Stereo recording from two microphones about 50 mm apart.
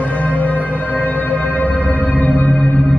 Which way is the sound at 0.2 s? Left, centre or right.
Left.